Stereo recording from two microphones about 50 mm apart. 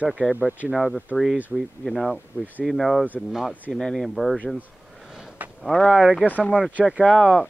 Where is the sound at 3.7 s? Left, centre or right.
Centre.